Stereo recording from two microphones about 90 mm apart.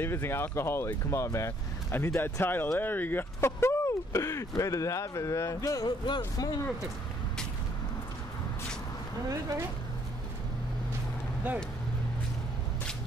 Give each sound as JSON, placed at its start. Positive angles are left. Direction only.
{"t": 0.0, "sound": "speech", "side_deg": 25}
{"t": 6.0, "sound": "speech", "side_deg": 50}
{"t": 9.3, "sound": "speech", "side_deg": -35}